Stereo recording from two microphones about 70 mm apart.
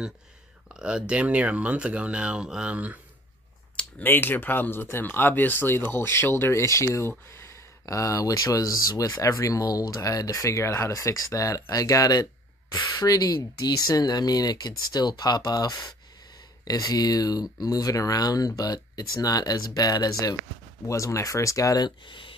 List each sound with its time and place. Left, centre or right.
0.7 s speech: centre
4.0 s speech: left
12.9 s speech: left
20.8 s speech: left